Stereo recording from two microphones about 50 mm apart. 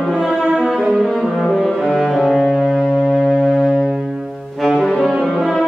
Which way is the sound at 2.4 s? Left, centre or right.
Centre.